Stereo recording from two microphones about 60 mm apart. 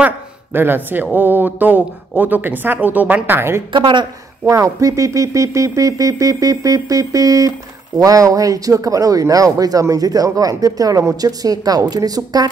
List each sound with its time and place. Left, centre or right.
0.5 s speech: right
3.3 s speech: right
4.5 s speech: right